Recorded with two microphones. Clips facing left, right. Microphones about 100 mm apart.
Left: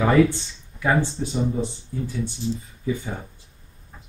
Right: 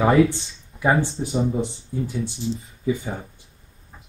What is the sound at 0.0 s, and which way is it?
Speech, 20° right (ahead or behind).